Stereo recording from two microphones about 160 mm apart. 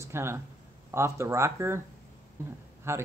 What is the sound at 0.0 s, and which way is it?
Speech, 15° right (ahead or behind).